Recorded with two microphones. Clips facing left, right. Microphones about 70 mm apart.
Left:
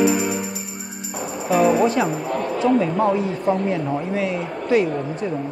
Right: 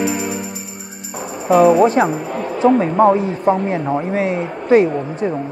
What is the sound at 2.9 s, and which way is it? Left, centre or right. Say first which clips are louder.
Speech: right 6 dB; right.